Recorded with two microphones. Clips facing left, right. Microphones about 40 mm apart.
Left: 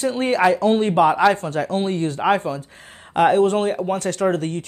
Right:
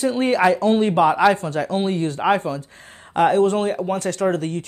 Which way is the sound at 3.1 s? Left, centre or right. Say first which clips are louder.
Left 1 dB; centre.